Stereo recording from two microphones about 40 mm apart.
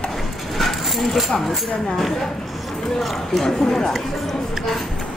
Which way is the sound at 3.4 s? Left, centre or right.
Centre.